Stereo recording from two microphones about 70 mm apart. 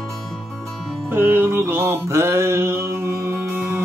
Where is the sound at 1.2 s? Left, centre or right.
Right.